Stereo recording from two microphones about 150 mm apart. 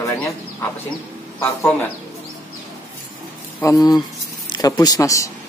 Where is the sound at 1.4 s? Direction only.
15° left (ahead or behind).